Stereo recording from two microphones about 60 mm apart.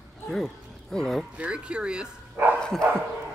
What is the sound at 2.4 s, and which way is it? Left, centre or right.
Speech, right.